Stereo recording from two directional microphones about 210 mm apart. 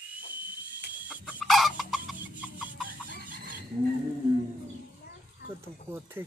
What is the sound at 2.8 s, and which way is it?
Squeal, 40° right (ahead or behind).